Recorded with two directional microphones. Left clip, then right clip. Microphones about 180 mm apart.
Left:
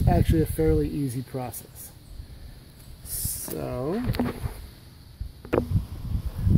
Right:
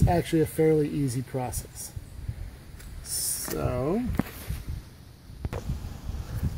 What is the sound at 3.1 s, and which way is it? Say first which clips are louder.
Speech: right 3 dB; centre (ahead or behind).